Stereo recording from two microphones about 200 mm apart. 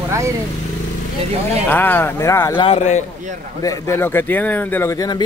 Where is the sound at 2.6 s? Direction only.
30° left (ahead or behind).